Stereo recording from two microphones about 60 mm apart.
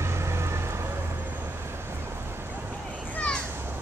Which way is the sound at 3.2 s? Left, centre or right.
Left.